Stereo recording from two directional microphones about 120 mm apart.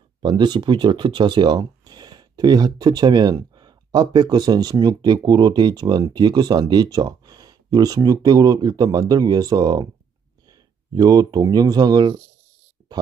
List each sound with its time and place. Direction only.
0.2 s speech: 40° right (ahead or behind)
10.9 s speech: 30° right (ahead or behind)